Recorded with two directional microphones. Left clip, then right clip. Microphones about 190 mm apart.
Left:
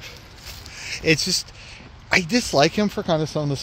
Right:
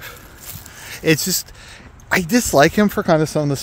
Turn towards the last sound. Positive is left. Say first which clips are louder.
# right 6 dB
turn(degrees=-50)  # may be behind; listen again after turning